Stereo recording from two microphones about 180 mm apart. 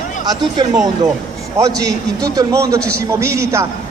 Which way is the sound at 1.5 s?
20° right (ahead or behind).